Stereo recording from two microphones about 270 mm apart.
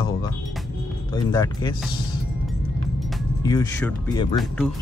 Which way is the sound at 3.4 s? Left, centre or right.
Centre.